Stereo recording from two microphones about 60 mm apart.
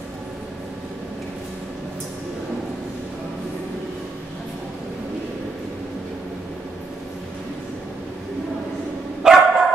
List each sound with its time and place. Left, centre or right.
9.2 s dog: centre